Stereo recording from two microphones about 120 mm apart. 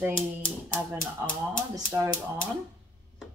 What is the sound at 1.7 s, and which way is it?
Speech, 25° right (ahead or behind).